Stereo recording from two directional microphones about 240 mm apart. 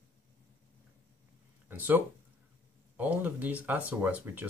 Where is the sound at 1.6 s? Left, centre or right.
Centre.